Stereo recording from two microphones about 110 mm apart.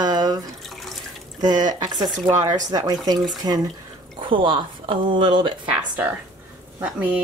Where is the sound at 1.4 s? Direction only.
40° right (ahead or behind).